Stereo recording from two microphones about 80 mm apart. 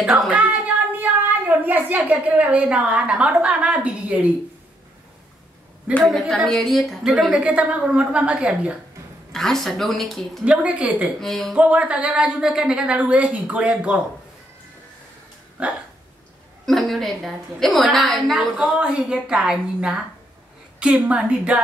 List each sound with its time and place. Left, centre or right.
0.3 s a sound: centre
1.7 s a woman's voice: right
6.0 s a woman's voice: centre
7.3 s a woman's voice: centre
9.3 s a woman's voice: centre
10.4 s a woman's voice: centre
11.1 s a woman's voice: centre
11.5 s a woman's voice: centre
15.6 s a woman's voice: centre
16.6 s a woman's voice: centre
18.6 s a woman's voice: centre